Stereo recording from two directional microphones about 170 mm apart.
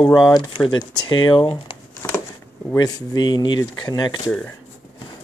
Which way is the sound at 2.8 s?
25° left (ahead or behind).